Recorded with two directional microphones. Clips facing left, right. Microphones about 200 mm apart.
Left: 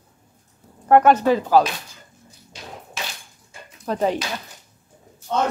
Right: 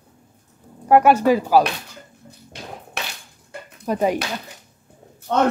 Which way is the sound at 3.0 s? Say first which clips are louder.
Right 1 dB; 65° right (ahead or behind).